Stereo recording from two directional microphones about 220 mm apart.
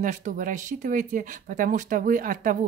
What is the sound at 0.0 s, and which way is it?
Speech, 35° right (ahead or behind).